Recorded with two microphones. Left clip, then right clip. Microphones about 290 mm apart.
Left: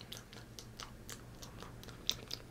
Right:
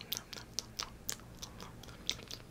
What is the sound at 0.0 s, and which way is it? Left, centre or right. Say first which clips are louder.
Chewing: right 7 dB; centre.